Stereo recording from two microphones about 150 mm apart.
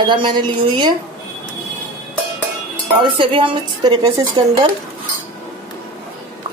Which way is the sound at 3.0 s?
35° right (ahead or behind).